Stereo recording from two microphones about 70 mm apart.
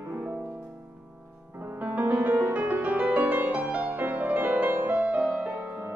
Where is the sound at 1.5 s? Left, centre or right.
Right.